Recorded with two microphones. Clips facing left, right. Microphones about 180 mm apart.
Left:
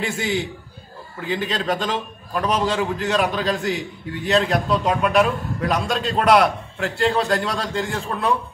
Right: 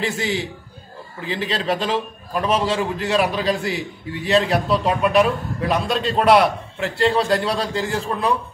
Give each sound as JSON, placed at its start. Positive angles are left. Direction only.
{"t": 0.0, "sound": "a man's voice", "side_deg": 0}